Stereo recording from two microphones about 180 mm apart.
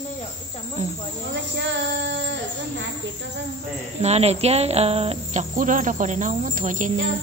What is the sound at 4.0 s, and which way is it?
Speech, 35° right (ahead or behind).